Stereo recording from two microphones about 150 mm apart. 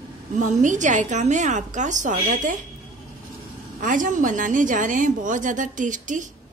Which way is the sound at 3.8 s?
60° right (ahead or behind).